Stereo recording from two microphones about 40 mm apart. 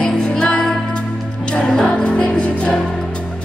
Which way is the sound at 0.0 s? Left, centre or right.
Left.